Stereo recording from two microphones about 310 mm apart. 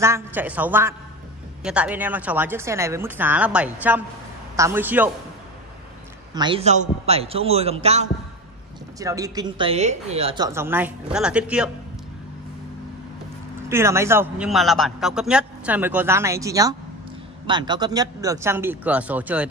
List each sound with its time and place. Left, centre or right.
0.0 s a man's voice: centre
6.3 s a man's voice: centre
13.7 s a man's voice: centre